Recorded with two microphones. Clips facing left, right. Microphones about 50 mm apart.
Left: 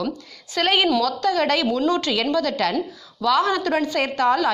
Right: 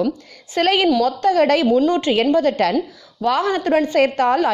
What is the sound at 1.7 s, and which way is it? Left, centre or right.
Speech, right.